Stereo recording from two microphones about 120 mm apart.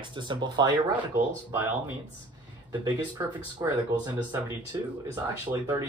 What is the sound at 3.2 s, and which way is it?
Speech, 25° right (ahead or behind).